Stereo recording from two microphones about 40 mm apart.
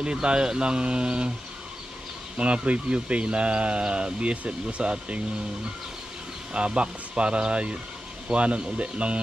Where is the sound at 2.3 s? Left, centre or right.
Right.